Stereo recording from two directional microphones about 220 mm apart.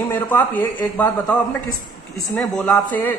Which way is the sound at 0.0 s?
10° left (ahead or behind).